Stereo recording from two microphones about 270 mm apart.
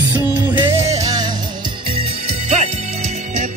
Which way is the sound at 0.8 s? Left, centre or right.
Centre.